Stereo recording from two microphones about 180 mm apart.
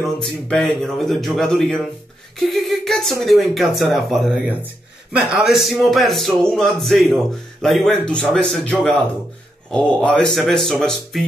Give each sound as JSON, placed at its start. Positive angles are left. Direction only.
{"t": 0.0, "sound": "speech", "side_deg": 0}